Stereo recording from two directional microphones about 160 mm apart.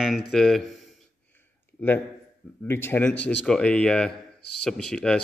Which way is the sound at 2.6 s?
15° left (ahead or behind).